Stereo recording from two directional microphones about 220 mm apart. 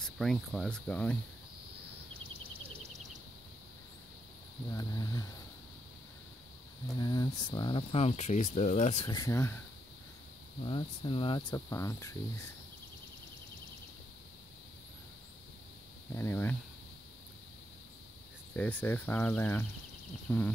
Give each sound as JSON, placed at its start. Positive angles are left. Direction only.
{"t": 0.0, "sound": "speech", "side_deg": 0}
{"t": 4.6, "sound": "speech", "side_deg": 15}
{"t": 7.0, "sound": "speech", "side_deg": 20}
{"t": 9.0, "sound": "speech", "side_deg": 15}
{"t": 10.6, "sound": "speech", "side_deg": 25}
{"t": 16.2, "sound": "speech", "side_deg": 10}
{"t": 18.5, "sound": "speech", "side_deg": 5}